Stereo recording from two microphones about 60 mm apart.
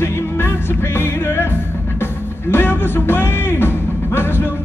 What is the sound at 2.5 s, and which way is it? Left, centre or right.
Music, left.